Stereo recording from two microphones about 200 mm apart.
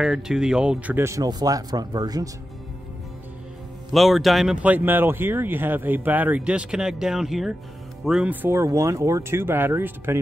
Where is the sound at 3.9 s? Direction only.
Centre (ahead or behind).